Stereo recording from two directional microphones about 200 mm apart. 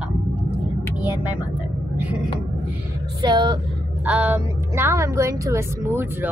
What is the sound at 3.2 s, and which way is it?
Speech, 20° right (ahead or behind).